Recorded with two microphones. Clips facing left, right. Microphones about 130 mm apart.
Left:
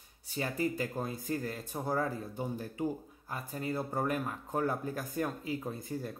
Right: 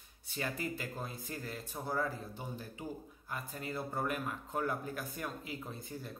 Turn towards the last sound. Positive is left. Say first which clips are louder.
# left 7 dB
turn(degrees=45)  # may be behind; listen again after turning